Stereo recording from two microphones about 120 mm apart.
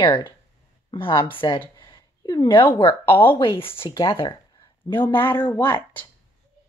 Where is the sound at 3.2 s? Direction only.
45° left (ahead or behind).